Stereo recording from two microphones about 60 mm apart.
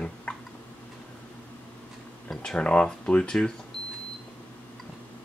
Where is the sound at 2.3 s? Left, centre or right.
Centre.